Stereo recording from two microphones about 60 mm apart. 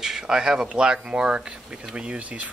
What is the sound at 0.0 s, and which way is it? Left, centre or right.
Speech, centre.